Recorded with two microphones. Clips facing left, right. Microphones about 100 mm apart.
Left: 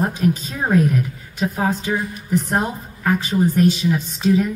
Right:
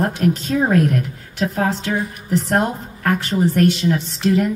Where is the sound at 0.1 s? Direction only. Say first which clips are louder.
Right 3 dB; 85° right.